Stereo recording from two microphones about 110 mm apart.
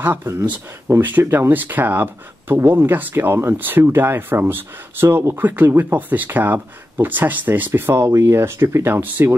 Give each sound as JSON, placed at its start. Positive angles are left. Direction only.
{"t": 0.0, "sound": "speech", "side_deg": -15}